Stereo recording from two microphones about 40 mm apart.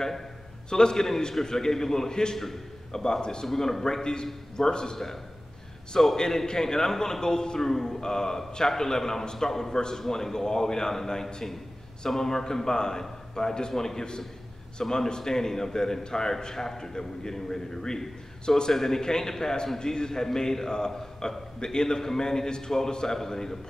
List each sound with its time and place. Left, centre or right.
0.7 s a man's voice: centre
2.3 s a man's voice: centre
3.4 s a man's voice: centre